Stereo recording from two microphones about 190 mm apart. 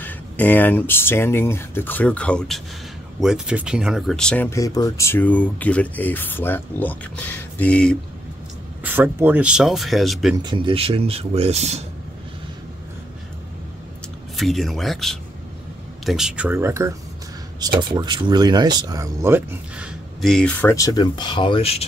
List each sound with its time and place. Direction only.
0.0 s speech: 10° left (ahead or behind)
8.8 s speech: 10° right (ahead or behind)
10.4 s speech: 25° right (ahead or behind)
14.3 s speech: centre (ahead or behind)
20.2 s speech: centre (ahead or behind); by 21.8 s 30° left (ahead or behind)